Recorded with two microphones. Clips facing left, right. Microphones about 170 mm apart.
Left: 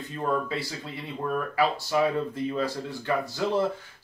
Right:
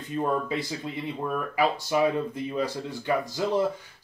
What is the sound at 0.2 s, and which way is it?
Speech, 15° right (ahead or behind).